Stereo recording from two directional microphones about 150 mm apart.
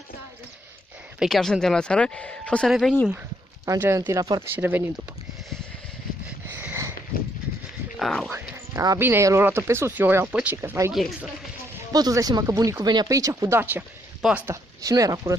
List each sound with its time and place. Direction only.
1.2 s speech: centre (ahead or behind)
3.6 s speech: 20° right (ahead or behind)
4.6 s speech: 10° right (ahead or behind)
6.5 s a sound: 15° right (ahead or behind)
8.0 s speech: 5° left (ahead or behind)
8.3 s speech: 20° right (ahead or behind)
10.9 s speech: centre (ahead or behind)
11.9 s speech: 25° right (ahead or behind)